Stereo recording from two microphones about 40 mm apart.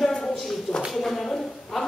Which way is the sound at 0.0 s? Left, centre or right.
Centre.